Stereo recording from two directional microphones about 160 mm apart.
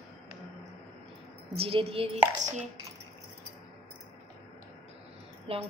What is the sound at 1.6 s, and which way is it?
Speech, 35° right (ahead or behind).